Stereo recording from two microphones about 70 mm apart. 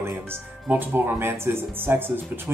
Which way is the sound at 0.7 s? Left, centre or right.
Right.